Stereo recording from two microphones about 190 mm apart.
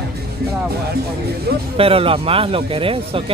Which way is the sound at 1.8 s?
30° right (ahead or behind).